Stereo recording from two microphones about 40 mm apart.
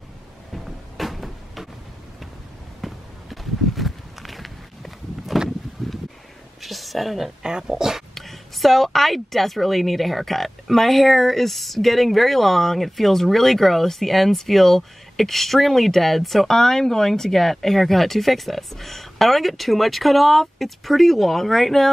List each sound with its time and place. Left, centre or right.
0.7 s music: centre
2.8 s walk: centre
5.8 s a sound: centre
6.6 s a woman's voice: centre
7.4 s speech: centre
8.1 s a woman's voice: centre